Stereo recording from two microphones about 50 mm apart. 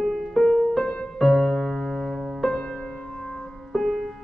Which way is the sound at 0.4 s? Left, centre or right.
Centre.